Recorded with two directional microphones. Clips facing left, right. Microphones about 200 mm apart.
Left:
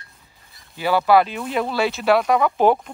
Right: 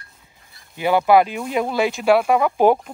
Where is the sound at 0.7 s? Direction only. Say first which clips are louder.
Right 1 dB; 20° right (ahead or behind).